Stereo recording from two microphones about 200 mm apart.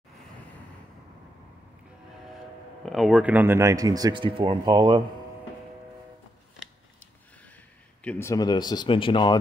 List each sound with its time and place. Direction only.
2.8 s speech: centre (ahead or behind); by 5.0 s 20° right (ahead or behind)
6.6 s a sound: 5° left (ahead or behind)
8.0 s speech: 10° left (ahead or behind)